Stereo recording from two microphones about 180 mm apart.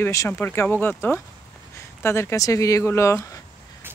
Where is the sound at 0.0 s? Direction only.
15° left (ahead or behind).